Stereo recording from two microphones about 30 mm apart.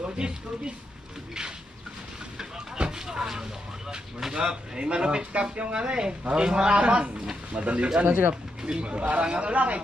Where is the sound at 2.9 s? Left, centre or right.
Right.